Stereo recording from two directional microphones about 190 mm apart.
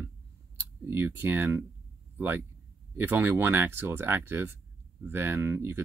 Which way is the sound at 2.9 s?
10° right (ahead or behind).